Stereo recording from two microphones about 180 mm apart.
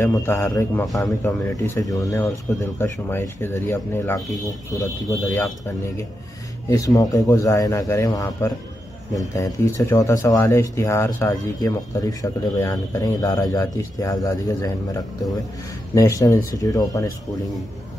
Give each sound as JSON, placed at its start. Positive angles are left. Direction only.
{"t": 0.0, "sound": "speech", "side_deg": 15}
{"t": 5.2, "sound": "speech", "side_deg": 15}
{"t": 6.7, "sound": "speech", "side_deg": 20}
{"t": 15.9, "sound": "speech", "side_deg": 15}